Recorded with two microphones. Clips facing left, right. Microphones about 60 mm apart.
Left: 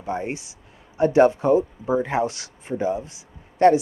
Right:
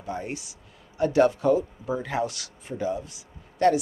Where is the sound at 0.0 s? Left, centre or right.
Left.